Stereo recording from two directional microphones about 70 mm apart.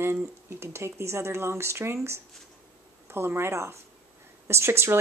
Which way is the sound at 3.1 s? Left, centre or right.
Right.